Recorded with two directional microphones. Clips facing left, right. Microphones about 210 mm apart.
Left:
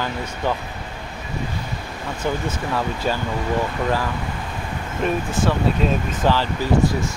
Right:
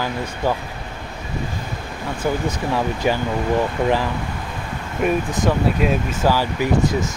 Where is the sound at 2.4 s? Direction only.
15° right (ahead or behind).